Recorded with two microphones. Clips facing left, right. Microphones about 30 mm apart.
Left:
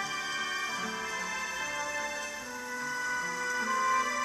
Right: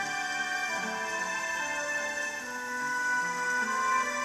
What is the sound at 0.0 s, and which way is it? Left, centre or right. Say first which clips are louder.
Music: right 2 dB; centre.